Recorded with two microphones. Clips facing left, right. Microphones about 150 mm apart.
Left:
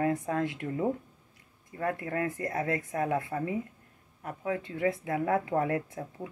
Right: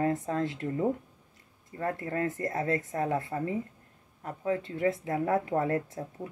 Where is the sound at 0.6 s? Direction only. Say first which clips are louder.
Right 1 dB; 30° right (ahead or behind).